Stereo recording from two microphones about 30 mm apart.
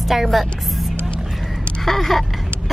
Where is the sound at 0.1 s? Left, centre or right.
Centre.